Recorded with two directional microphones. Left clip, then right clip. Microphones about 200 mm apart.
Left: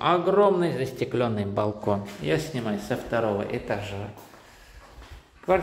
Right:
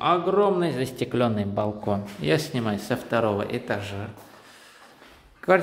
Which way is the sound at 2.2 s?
30° right (ahead or behind).